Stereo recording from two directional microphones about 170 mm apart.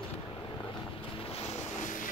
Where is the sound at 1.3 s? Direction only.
40° left (ahead or behind).